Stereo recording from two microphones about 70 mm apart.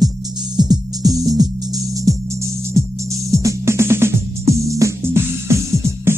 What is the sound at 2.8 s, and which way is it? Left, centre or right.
Music, right.